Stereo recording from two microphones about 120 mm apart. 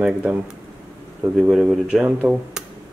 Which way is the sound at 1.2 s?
10° right (ahead or behind).